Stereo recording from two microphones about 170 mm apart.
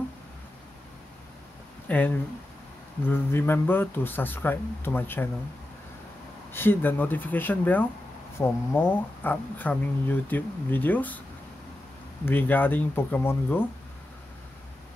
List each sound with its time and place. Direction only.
1.9 s speech: 10° left (ahead or behind)
6.5 s speech: 10° left (ahead or behind)
12.3 s speech: 10° left (ahead or behind)